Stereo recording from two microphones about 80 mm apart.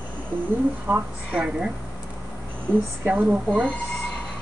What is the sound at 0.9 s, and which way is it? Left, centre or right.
Speech, right.